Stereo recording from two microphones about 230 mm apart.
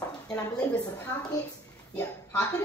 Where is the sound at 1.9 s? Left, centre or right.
Centre.